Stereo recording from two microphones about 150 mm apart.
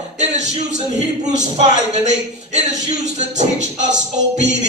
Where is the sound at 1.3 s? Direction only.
50° right (ahead or behind).